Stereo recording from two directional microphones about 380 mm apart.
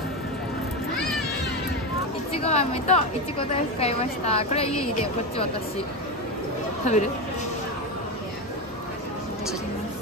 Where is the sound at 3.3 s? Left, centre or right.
Centre.